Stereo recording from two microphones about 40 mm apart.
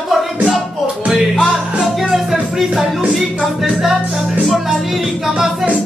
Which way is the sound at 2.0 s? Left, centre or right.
Centre.